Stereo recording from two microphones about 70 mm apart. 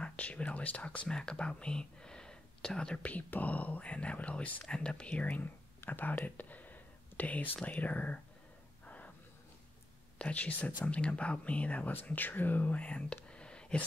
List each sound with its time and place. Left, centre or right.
0.0 s speech: centre
5.1 s speech: left
6.2 s whispering: left
7.6 s speech: left
8.8 s gasp: left
10.1 s speech: centre